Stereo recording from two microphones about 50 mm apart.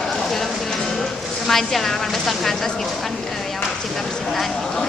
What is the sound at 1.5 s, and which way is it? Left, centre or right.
Speech, centre.